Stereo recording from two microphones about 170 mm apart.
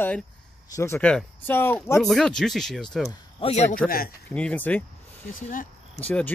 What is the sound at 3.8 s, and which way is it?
Speech, 60° left (ahead or behind).